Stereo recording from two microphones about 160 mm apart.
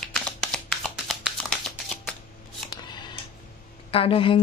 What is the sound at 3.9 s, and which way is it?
Speech, 35° left (ahead or behind).